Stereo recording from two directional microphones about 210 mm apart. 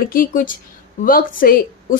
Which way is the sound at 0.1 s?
45° left (ahead or behind).